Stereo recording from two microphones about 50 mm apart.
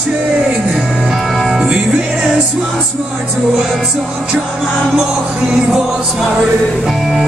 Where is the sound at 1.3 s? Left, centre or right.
Centre.